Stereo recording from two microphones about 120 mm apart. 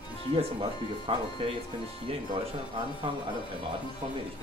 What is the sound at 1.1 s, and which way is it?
Speech, 50° right (ahead or behind).